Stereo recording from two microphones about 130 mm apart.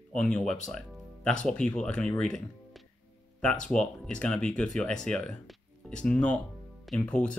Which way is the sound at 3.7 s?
10° left (ahead or behind).